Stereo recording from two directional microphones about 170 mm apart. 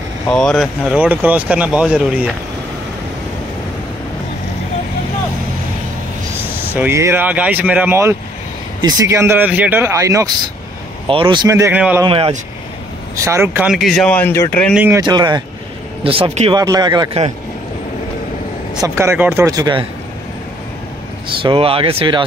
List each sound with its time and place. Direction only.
0.3 s speech: 5° left (ahead or behind)
6.7 s speech: 15° right (ahead or behind)
11.1 s speech: 30° right (ahead or behind)
11.4 s speech: 15° right (ahead or behind)
12.0 s speech: 25° right (ahead or behind)
13.1 s speech: 15° right (ahead or behind); by 14.7 s 15° left (ahead or behind)
14.9 s speech: 25° right (ahead or behind)
18.8 s speech: 15° right (ahead or behind)
21.4 s speech: 30° right (ahead or behind)